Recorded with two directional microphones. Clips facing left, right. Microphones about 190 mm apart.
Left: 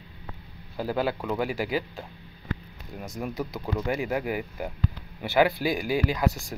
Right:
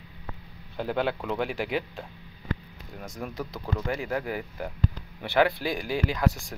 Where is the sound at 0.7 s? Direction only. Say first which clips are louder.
Left 1 dB; 5° left (ahead or behind).